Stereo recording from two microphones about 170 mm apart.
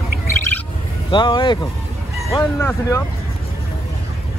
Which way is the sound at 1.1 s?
25° left (ahead or behind).